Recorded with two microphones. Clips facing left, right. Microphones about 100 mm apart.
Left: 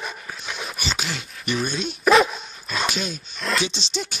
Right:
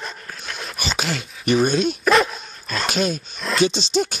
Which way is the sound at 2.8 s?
50° right (ahead or behind).